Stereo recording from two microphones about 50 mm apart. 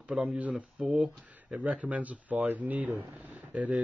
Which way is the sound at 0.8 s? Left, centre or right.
Centre.